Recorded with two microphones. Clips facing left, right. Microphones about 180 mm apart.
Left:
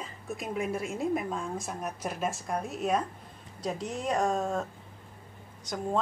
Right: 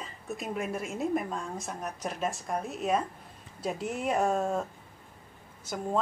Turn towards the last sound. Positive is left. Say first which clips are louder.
# even
turn(degrees=-5)  # may be behind; listen again after turning